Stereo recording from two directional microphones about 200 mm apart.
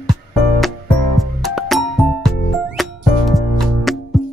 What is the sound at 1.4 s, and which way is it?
Music, centre (ahead or behind).